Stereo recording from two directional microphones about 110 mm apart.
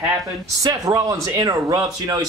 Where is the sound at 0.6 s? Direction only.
30° right (ahead or behind).